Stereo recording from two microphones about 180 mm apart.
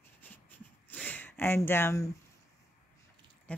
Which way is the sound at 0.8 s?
10° left (ahead or behind).